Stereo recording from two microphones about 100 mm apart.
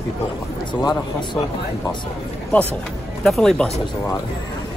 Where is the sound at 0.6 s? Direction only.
45° left (ahead or behind).